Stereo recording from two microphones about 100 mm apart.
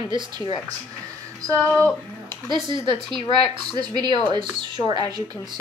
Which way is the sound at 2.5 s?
55° right (ahead or behind).